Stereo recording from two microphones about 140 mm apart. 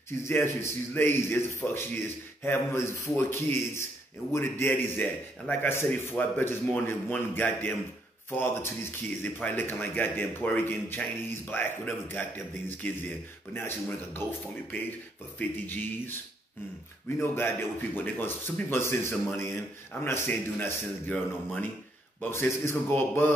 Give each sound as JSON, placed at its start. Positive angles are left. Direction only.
{"t": 0.2, "sound": "speech", "side_deg": 20}
{"t": 17.2, "sound": "speech", "side_deg": 15}